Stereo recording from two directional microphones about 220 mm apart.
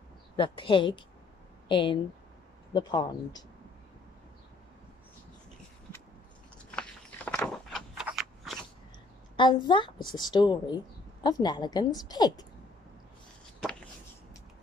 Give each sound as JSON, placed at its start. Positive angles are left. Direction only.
{"t": 0.4, "sound": "a woman's voice", "side_deg": 20}
{"t": 6.7, "sound": "a sound", "side_deg": 5}
{"t": 9.4, "sound": "a woman's voice", "side_deg": 20}